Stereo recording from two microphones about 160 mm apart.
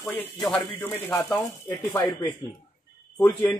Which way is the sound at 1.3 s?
25° left (ahead or behind).